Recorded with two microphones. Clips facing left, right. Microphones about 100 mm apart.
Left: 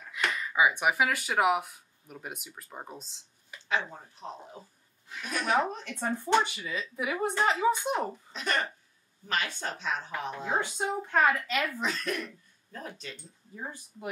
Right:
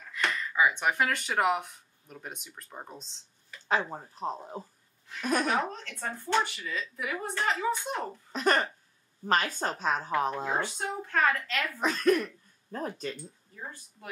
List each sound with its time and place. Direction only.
0.1 s speech: 10° left (ahead or behind)
3.6 s speech: 40° right (ahead or behind)
5.6 s speech: 15° left (ahead or behind)
8.3 s speech: 40° right (ahead or behind)
10.6 s speech: 15° left (ahead or behind)
11.8 s speech: 45° right (ahead or behind)
13.6 s speech: 15° left (ahead or behind)